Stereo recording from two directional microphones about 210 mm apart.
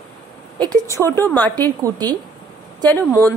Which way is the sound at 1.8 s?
20° right (ahead or behind).